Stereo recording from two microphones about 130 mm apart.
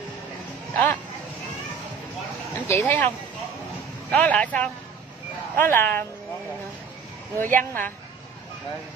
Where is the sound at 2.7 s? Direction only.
20° left (ahead or behind).